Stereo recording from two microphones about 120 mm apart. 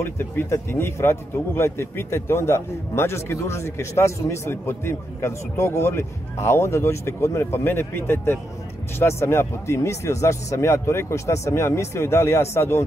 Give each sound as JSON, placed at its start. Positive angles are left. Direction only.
{"t": 0.0, "sound": "a man's voice", "side_deg": 20}